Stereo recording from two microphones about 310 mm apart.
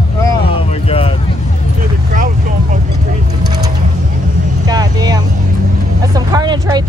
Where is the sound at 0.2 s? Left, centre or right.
Centre.